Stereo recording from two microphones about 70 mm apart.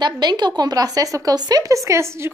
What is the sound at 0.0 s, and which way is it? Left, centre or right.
Speech, right.